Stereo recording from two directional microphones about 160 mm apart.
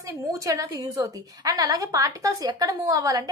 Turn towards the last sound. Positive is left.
turn(degrees=-20)  # may be behind; listen again after turning